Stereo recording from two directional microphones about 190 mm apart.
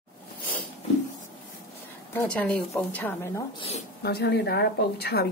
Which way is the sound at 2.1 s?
5° left (ahead or behind).